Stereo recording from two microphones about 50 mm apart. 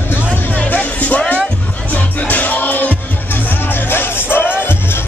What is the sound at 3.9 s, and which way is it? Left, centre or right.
Music, left.